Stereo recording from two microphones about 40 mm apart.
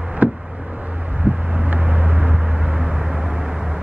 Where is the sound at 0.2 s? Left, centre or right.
Right.